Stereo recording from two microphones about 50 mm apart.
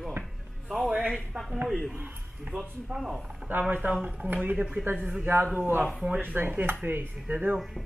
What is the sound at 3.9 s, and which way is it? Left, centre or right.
Speech, right.